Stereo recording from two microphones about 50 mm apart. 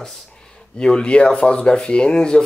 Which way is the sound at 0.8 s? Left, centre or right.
Centre.